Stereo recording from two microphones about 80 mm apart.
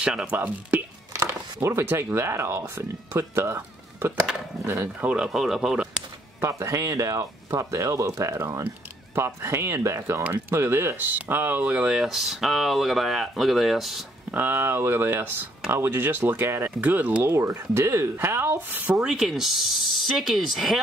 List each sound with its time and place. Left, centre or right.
0.0 s speech: centre
0.4 s speech: right
5.0 s speech: centre
6.4 s speech: right
11.6 s speech: centre
14.3 s speech: right
16.8 s speech: centre
17.2 s speech: right
18.9 s speech: centre